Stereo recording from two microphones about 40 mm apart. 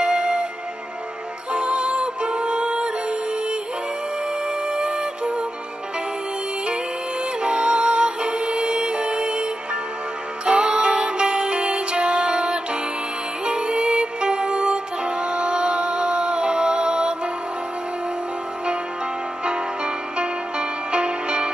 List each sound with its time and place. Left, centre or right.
0.0 s music: right
1.5 s music: right
4.6 s music: right
7.4 s music: right
19.4 s music: right